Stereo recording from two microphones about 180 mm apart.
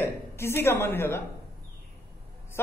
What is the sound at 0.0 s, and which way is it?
A woman's voice, 15° left (ahead or behind).